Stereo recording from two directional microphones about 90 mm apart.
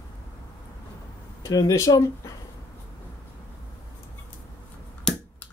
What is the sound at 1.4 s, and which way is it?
Speech, 35° left (ahead or behind).